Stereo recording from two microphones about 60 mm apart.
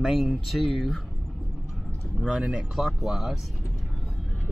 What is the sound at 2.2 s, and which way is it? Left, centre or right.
Speech, centre.